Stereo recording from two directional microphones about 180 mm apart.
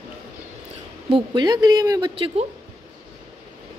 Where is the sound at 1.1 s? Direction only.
25° right (ahead or behind).